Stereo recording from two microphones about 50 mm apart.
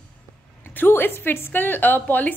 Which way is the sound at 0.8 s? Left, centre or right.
Left.